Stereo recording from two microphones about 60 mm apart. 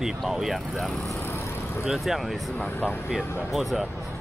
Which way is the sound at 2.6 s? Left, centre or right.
Left.